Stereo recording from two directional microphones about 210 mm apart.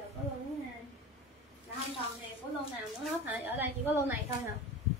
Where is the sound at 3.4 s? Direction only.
10° right (ahead or behind).